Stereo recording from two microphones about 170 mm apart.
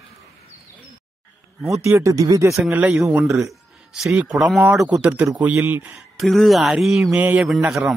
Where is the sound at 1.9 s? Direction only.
15° right (ahead or behind).